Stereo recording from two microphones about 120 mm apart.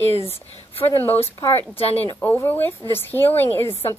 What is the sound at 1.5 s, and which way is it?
Speech, 55° left (ahead or behind).